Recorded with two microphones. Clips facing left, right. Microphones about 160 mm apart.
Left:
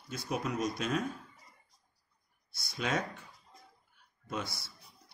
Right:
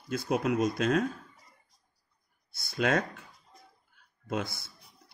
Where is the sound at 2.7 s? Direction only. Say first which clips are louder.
Right 6 dB; 90° right.